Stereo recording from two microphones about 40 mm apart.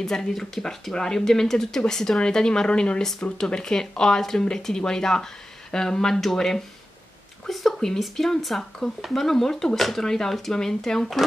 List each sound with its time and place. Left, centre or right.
0.0 s speech: centre